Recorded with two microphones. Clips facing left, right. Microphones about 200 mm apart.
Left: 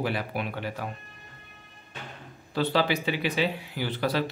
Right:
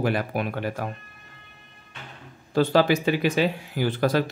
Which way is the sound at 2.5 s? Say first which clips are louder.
Right 6 dB; 45° right (ahead or behind).